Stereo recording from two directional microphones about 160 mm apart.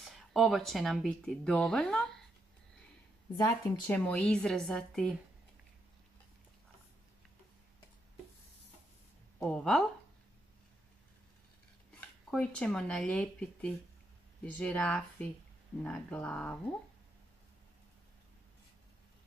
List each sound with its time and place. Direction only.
0.0 s speech: centre (ahead or behind)
3.3 s a woman's voice: 25° left (ahead or behind)
3.8 s speech: 10° left (ahead or behind)
9.4 s speech: 5° left (ahead or behind)
12.3 s speech: 5° left (ahead or behind)